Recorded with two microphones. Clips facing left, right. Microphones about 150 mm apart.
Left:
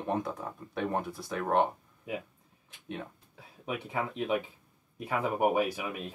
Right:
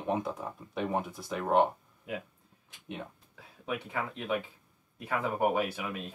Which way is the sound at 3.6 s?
15° left (ahead or behind).